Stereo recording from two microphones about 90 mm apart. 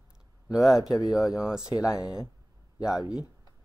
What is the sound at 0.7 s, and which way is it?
Speech, 40° left (ahead or behind).